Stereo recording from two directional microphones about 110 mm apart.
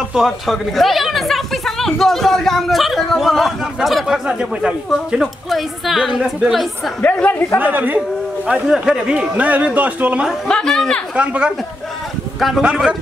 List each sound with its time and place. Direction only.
0.1 s a woman's voice: centre (ahead or behind)
7.0 s speech: 15° left (ahead or behind)
7.6 s speech: 15° right (ahead or behind)
8.5 s speech: 5° right (ahead or behind)
10.5 s speech: 5° left (ahead or behind)
11.1 s speech: 10° right (ahead or behind)
12.4 s a woman's voice: centre (ahead or behind)